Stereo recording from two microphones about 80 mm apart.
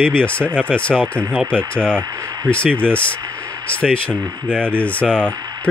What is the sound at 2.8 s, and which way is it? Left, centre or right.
Speech, centre.